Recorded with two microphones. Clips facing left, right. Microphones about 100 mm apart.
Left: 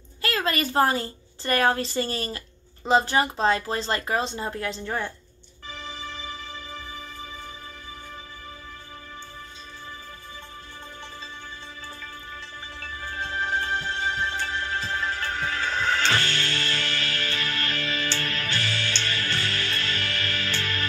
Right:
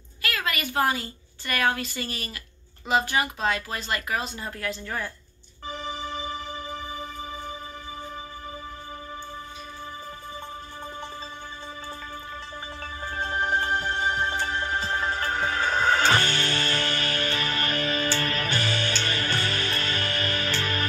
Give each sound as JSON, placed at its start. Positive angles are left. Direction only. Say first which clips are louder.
{"t": 0.2, "sound": "a woman's voice", "louder": "left 4 dB", "side_deg": 30}
{"t": 13.2, "sound": "music", "louder": "right 2 dB", "side_deg": -35}
{"t": 13.7, "sound": "music", "louder": "right 2 dB", "side_deg": -25}
{"t": 13.9, "sound": "music", "louder": "right 2 dB", "side_deg": -40}
{"t": 14.4, "sound": "music", "louder": "right 2 dB", "side_deg": -25}
{"t": 15.4, "sound": "music", "louder": "right 3 dB", "side_deg": -20}
{"t": 18.1, "sound": "music", "louder": "right 3 dB", "side_deg": -45}
{"t": 18.4, "sound": "music", "louder": "right 2 dB", "side_deg": -20}